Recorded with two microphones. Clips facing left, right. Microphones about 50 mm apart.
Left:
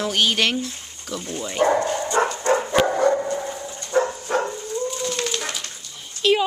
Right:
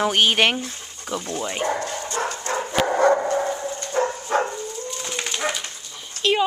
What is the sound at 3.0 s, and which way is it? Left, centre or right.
Dog, right.